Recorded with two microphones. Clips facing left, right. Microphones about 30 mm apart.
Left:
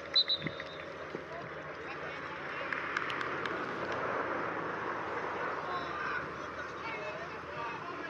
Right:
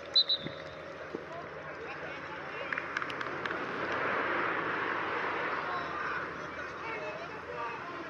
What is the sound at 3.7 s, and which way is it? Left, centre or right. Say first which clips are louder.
Vehicle: right 2 dB; right.